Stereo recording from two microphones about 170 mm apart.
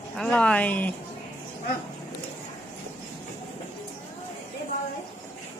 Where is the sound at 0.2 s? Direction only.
5° left (ahead or behind).